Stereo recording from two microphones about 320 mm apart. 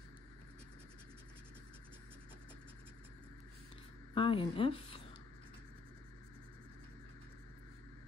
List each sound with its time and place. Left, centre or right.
4.1 s speech: centre